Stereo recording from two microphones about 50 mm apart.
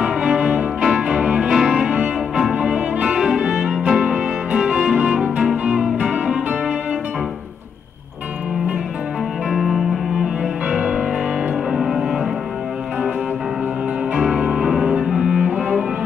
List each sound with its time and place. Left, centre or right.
0.0 s music: centre
9.5 s cello: centre
11.7 s music: centre
14.1 s cello: centre